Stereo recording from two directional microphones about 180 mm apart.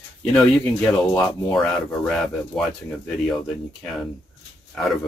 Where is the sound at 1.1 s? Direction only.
20° left (ahead or behind).